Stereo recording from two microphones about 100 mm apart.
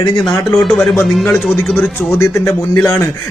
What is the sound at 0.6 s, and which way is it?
Speech, 10° left (ahead or behind).